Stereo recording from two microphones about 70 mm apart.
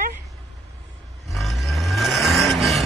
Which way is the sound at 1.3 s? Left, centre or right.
Centre.